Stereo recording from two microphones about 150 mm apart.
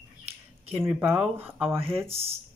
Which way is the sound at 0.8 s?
15° right (ahead or behind).